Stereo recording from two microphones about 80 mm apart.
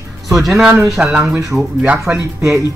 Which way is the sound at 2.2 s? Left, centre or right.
Right.